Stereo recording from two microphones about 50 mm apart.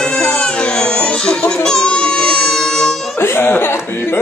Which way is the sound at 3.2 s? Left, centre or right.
Left.